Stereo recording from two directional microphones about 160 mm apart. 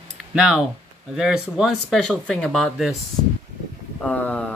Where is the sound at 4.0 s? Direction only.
10° left (ahead or behind).